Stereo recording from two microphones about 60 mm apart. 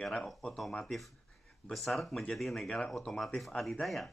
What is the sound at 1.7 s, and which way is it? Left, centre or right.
Speech, centre.